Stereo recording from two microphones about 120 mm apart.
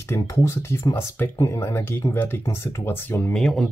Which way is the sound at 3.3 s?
5° left (ahead or behind).